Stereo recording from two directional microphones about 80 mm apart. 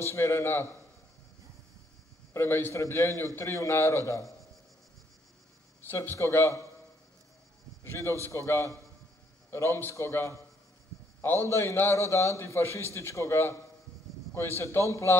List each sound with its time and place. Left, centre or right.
0.0 s a man's voice: left
2.3 s a man's voice: left
5.9 s a man's voice: left
7.9 s a man's voice: left